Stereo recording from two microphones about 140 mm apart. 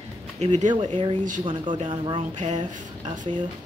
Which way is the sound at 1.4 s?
35° right (ahead or behind).